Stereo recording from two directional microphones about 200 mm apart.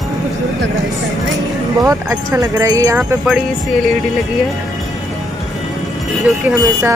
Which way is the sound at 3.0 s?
5° right (ahead or behind).